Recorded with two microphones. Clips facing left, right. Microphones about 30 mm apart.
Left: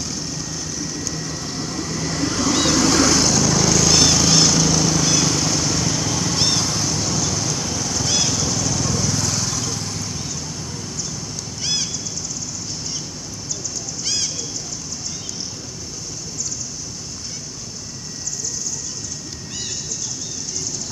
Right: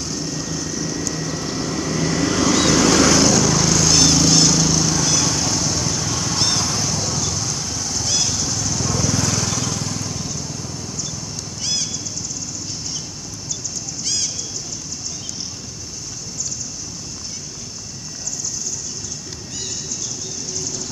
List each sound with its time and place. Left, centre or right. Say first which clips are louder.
0.0 s vehicle: right 2 dB; centre
2.0 s vehicle: right 3 dB; right
3.2 s vehicle: right 2 dB; centre
9.2 s vehicle: right 2 dB; right
9.8 s vehicle: right 1 dB; centre
11.6 s a sound: left 1 dB; centre
14.0 s bird: even; centre